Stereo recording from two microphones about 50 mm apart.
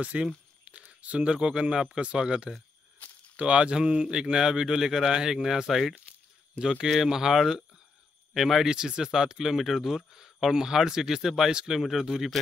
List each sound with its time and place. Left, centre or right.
0.0 s speech: right; by 12.3 s centre